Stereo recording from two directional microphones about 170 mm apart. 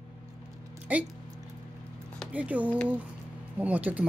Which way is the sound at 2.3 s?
10° right (ahead or behind).